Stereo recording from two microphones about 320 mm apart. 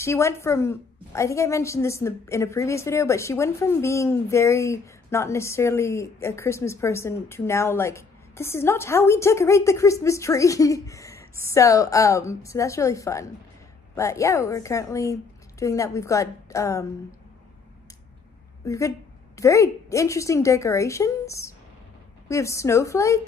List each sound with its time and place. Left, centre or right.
0.0 s a woman's voice: centre
18.7 s a woman's voice: centre